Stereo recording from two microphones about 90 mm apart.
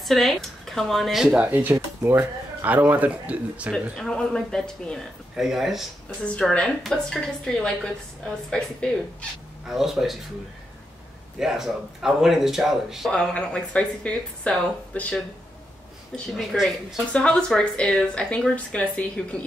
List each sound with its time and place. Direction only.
0.0 s speech: centre (ahead or behind)
1.4 s speech: 20° right (ahead or behind)
3.9 s a woman's voice: 5° left (ahead or behind)
5.3 s speech: 5° right (ahead or behind)
6.0 s a woman's voice: 10° left (ahead or behind)
9.7 s speech: 5° right (ahead or behind)
11.3 s speech: 5° right (ahead or behind)
13.1 s a woman's voice: 10° left (ahead or behind)
16.5 s a woman's voice: 10° left (ahead or behind)